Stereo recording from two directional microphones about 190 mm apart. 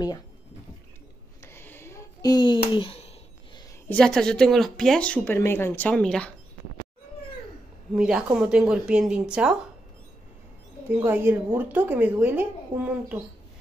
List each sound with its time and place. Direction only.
1.4 s a sound: 10° left (ahead or behind)
2.7 s speech: 30° left (ahead or behind)
3.9 s speech: 5° left (ahead or behind)
7.9 s speech: 5° right (ahead or behind)
11.0 s a woman's voice: 10° right (ahead or behind)